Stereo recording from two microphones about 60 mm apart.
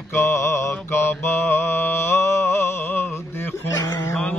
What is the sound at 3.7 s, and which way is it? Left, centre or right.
Mantra, left.